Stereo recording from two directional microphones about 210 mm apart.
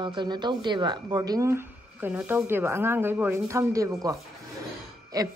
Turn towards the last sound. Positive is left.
turn(degrees=-15)  # may be behind; listen again after turning